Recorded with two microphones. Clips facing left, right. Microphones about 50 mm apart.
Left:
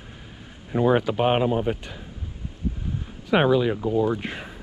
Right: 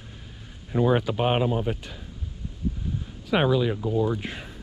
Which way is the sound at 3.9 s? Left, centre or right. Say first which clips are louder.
Left 3 dB; left.